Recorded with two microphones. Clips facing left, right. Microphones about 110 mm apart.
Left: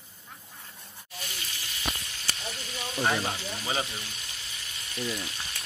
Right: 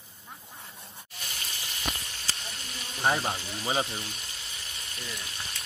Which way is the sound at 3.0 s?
15° right (ahead or behind).